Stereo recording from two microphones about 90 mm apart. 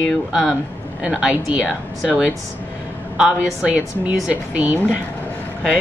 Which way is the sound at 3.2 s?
5° right (ahead or behind).